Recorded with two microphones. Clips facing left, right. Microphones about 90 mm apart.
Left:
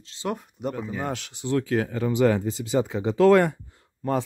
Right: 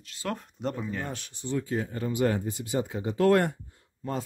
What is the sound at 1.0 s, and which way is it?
Speech, 90° left.